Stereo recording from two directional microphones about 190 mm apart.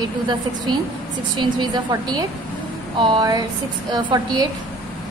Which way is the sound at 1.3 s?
20° right (ahead or behind).